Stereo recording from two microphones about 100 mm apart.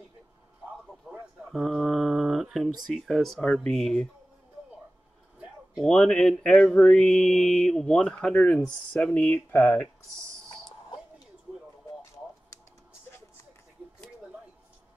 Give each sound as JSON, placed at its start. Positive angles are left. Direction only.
{"t": 1.1, "sound": "a sound", "side_deg": -5}
{"t": 1.5, "sound": "speech", "side_deg": 0}
{"t": 5.9, "sound": "mantra", "side_deg": 5}